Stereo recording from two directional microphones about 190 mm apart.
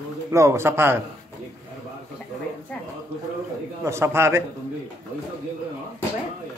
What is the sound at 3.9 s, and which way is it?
Speech, 15° right (ahead or behind).